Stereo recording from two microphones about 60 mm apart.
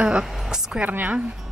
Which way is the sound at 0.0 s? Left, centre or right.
Centre.